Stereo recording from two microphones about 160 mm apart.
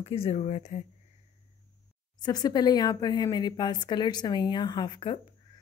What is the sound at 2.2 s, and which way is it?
A woman's voice, 25° left (ahead or behind).